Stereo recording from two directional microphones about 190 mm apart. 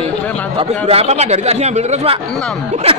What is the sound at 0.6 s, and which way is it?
Speech, 30° right (ahead or behind).